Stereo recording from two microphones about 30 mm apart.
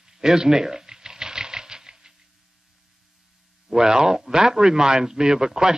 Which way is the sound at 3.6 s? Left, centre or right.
Centre.